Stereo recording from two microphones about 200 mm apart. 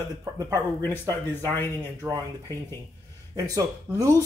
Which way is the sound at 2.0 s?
15° right (ahead or behind).